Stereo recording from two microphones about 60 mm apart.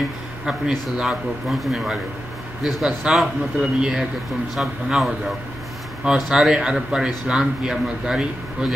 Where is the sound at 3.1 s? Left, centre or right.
Centre.